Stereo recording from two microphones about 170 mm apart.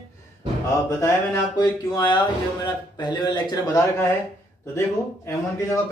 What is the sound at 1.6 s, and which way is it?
A man's voice, 25° left (ahead or behind).